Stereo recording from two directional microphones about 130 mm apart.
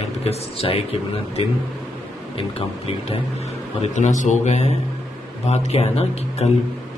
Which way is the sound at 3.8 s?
65° left (ahead or behind).